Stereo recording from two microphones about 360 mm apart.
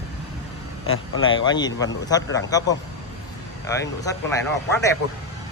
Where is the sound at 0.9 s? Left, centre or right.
Left.